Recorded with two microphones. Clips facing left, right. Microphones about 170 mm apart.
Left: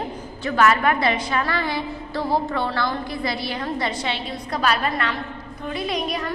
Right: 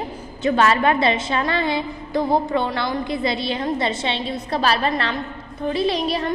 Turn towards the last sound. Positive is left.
turn(degrees=-30)  # may be behind; listen again after turning